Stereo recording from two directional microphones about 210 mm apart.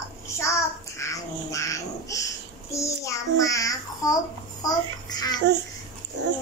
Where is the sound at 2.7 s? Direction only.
15° left (ahead or behind).